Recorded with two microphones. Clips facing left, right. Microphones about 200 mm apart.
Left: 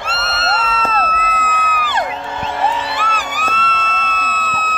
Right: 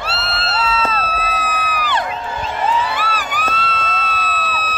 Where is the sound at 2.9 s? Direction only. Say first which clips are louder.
Even; 35° right (ahead or behind).